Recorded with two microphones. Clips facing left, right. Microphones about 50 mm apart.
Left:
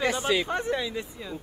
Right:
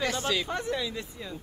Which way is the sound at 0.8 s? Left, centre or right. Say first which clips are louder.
Left 2 dB; centre.